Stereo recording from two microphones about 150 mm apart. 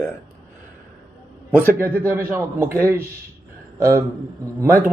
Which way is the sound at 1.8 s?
15° right (ahead or behind).